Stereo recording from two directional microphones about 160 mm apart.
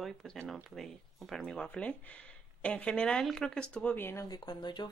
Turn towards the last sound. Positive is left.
turn(degrees=30)  # may be behind; listen again after turning